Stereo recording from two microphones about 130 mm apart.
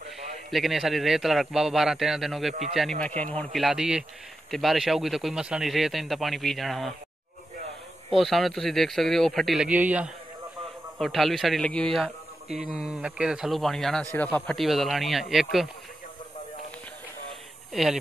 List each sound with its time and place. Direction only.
0.5 s a man's voice: centre (ahead or behind)
3.2 s speech: 10° left (ahead or behind)
3.6 s a man's voice: 5° right (ahead or behind)
8.2 s a man's voice: centre (ahead or behind)
11.0 s a man's voice: centre (ahead or behind)
14.1 s speech: 15° left (ahead or behind)
14.6 s a man's voice: centre (ahead or behind)